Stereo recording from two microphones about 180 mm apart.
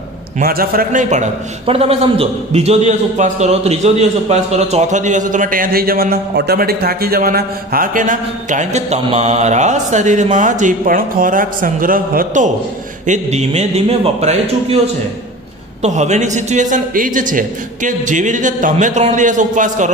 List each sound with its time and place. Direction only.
0.4 s a man's voice: 55° right (ahead or behind)
13.0 s speech: 40° right (ahead or behind)
15.8 s a man's voice: 40° right (ahead or behind)